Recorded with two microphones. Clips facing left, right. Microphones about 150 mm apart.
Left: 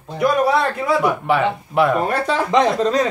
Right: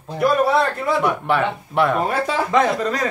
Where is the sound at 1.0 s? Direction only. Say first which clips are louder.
Left 1 dB; centre (ahead or behind).